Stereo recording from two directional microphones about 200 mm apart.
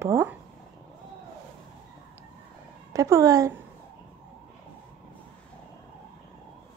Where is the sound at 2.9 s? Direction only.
15° right (ahead or behind).